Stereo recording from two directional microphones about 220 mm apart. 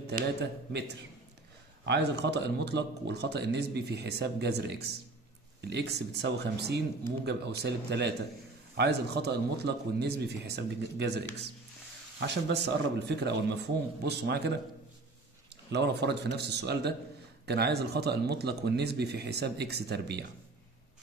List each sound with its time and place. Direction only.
0.1 s a man's voice: 50° right (ahead or behind)
15.7 s a man's voice: 50° right (ahead or behind)